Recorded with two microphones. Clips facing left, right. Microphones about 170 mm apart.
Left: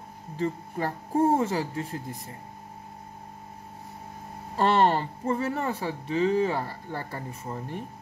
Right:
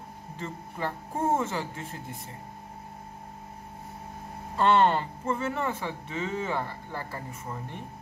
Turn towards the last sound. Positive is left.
turn(degrees=35)  # may be behind; listen again after turning